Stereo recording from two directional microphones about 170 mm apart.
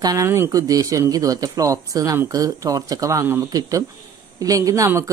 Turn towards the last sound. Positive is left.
turn(degrees=-15)  # may be behind; listen again after turning